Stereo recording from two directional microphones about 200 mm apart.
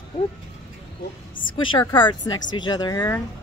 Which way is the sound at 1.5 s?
25° left (ahead or behind).